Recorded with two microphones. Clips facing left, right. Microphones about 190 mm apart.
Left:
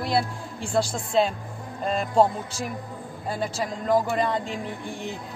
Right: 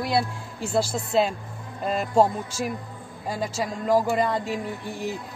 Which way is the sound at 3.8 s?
10° right (ahead or behind).